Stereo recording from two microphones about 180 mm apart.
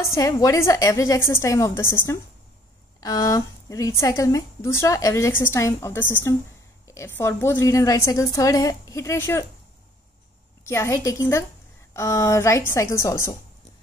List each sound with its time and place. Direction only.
0.0 s a woman's voice: 20° left (ahead or behind)
10.6 s a woman's voice: 15° left (ahead or behind)